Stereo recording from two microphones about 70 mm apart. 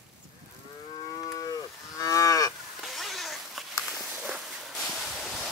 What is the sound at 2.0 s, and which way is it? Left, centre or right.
Moo, left.